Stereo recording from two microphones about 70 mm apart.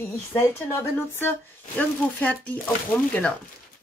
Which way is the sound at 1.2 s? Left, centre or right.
Left.